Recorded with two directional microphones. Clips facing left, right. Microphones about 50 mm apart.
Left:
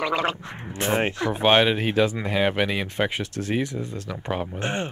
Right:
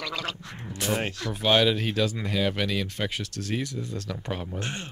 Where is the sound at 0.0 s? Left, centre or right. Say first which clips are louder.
Left 9 dB; left.